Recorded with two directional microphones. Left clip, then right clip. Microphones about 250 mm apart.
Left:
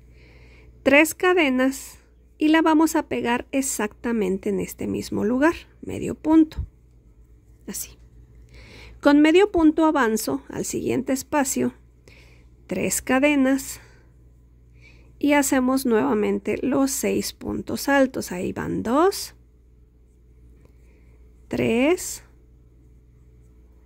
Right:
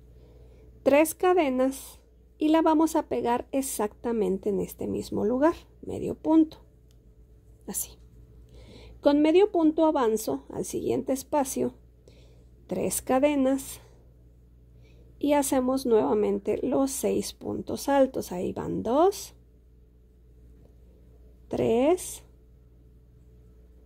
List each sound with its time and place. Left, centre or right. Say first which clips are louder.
0.8 s speech: left 4 dB; centre
8.5 s a woman's voice: left 7 dB; centre
21.5 s speech: left 2 dB; centre